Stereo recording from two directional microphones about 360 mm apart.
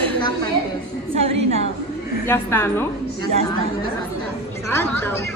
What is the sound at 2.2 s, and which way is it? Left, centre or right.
Speech, centre.